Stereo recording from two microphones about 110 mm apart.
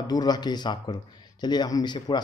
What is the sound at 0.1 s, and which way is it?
Speech, 40° left (ahead or behind).